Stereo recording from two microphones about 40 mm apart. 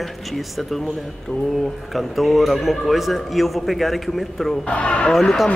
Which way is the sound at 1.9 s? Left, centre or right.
Centre.